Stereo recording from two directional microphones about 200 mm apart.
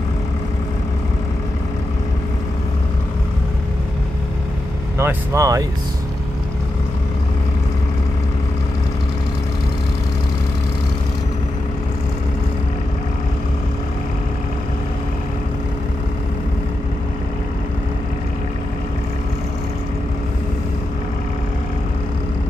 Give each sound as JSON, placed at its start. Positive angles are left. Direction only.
{"t": 4.9, "sound": "speech", "side_deg": -15}